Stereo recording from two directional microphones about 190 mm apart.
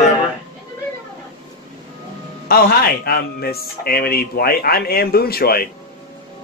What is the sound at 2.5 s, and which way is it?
Speech, 55° left (ahead or behind).